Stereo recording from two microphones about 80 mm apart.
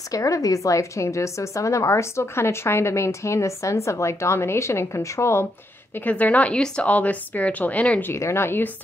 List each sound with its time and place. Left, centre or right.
0.1 s a woman's voice: left
5.9 s a woman's voice: centre
8.0 s a woman's voice: left